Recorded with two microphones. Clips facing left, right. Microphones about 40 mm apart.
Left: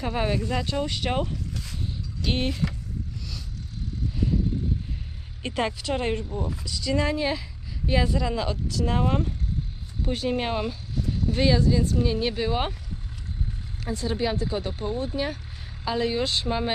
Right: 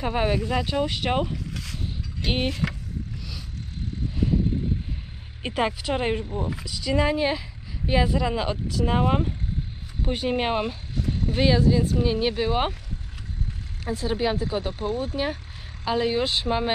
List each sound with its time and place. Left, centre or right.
0.0 s speech: centre
5.4 s speech: centre
13.8 s speech: centre